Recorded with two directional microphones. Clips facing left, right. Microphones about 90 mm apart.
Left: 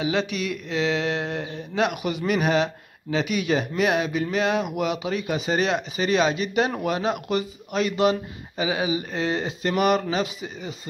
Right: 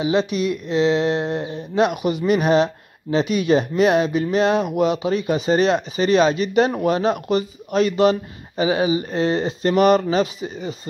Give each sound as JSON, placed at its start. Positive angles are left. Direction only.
{"t": 0.0, "sound": "speech", "side_deg": -25}